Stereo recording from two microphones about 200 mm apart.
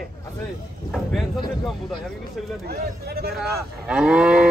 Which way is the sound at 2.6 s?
50° right (ahead or behind).